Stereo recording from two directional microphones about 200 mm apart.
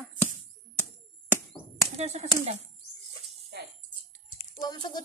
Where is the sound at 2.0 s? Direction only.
35° right (ahead or behind).